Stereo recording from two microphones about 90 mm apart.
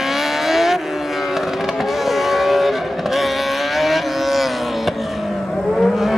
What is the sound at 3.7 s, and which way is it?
Vehicle, centre (ahead or behind).